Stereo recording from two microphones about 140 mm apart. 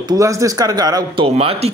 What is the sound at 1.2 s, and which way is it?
Speech, 45° right (ahead or behind).